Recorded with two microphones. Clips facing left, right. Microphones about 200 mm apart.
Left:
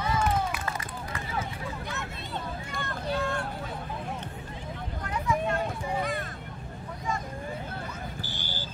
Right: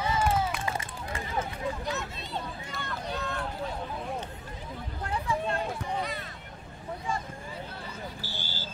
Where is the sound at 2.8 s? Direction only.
50° left (ahead or behind).